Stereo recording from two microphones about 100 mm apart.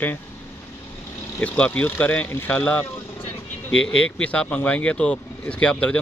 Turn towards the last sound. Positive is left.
turn(degrees=10)  # may be behind; listen again after turning